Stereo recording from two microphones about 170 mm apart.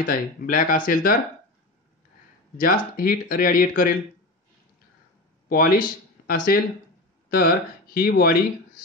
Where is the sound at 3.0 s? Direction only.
55° left (ahead or behind).